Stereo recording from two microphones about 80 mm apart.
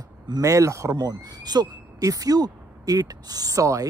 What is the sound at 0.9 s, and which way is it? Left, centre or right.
Speech, right.